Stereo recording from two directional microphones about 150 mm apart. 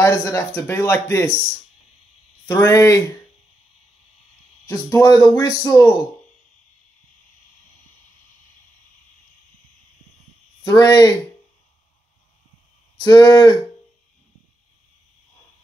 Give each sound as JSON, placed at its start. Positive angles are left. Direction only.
{"t": 0.0, "sound": "speech", "side_deg": 20}
{"t": 2.4, "sound": "speech", "side_deg": 20}
{"t": 4.6, "sound": "speech", "side_deg": 20}
{"t": 10.6, "sound": "speech", "side_deg": 25}
{"t": 12.9, "sound": "speech", "side_deg": 25}